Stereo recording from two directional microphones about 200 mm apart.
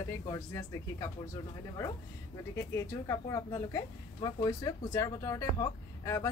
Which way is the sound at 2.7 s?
15° left (ahead or behind).